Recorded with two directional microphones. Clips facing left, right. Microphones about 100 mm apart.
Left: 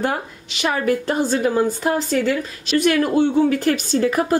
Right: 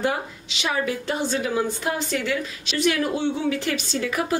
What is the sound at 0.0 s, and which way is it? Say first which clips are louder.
A woman's voice: left 2 dB; 50° left (ahead or behind).